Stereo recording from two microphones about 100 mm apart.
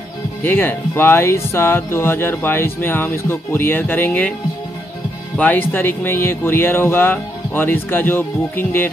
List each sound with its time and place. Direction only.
0.4 s speech: 20° left (ahead or behind)
5.4 s speech: 20° left (ahead or behind)